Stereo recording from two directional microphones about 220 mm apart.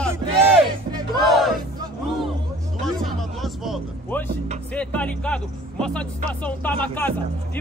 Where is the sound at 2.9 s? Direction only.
Centre (ahead or behind).